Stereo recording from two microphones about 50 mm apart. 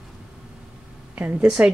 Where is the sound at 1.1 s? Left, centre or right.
Right.